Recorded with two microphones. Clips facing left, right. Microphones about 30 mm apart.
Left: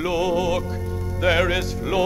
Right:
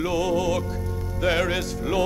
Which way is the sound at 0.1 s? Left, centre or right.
Centre.